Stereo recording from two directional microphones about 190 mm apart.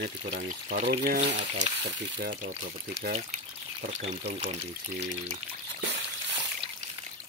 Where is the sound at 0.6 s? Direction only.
40° right (ahead or behind).